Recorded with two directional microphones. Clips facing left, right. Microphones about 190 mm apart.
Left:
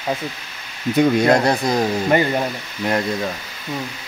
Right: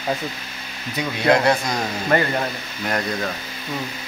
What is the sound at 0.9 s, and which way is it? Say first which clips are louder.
Speech: left 5 dB; 45° left (ahead or behind).